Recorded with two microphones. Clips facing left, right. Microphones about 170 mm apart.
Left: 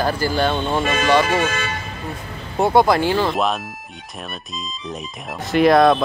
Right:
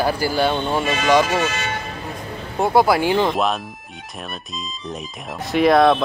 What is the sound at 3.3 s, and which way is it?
Speech, centre (ahead or behind).